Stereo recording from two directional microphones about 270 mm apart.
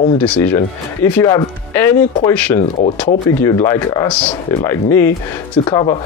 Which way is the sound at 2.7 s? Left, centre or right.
Left.